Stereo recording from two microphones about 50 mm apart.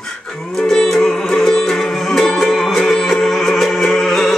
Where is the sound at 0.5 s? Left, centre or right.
Centre.